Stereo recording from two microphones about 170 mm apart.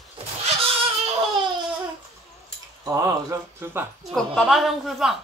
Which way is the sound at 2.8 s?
20° right (ahead or behind).